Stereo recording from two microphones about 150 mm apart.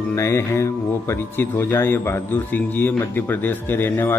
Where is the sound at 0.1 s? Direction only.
20° left (ahead or behind).